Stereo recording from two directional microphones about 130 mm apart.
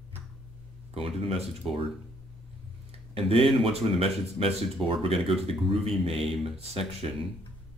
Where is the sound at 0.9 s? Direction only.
45° right (ahead or behind).